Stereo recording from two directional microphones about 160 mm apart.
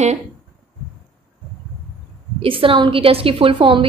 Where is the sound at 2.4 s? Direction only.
35° right (ahead or behind).